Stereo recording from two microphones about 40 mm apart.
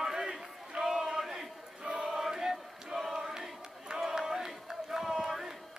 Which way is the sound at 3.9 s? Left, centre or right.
Centre.